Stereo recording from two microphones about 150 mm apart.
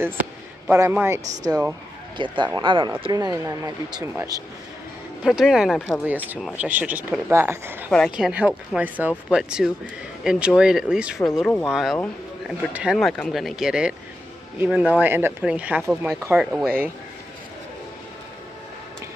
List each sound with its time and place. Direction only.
0.0 s speech: 15° right (ahead or behind)
2.1 s speech: 30° right (ahead or behind)
5.2 s speech: centre (ahead or behind)
7.9 s speech: 5° left (ahead or behind)
8.3 s speech: 10° right (ahead or behind)